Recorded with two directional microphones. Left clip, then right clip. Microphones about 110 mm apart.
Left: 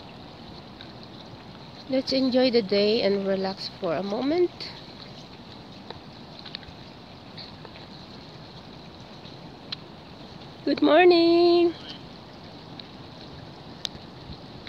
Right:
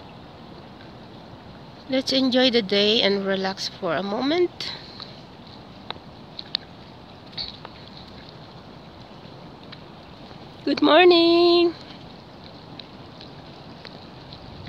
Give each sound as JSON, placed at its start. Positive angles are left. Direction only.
{"t": 1.9, "sound": "speech", "side_deg": -15}
{"t": 10.6, "sound": "speech", "side_deg": -30}